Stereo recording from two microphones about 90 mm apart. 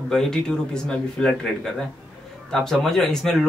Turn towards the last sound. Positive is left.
turn(degrees=5)  # may be behind; listen again after turning